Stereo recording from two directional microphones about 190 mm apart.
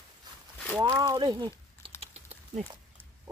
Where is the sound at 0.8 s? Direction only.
20° right (ahead or behind).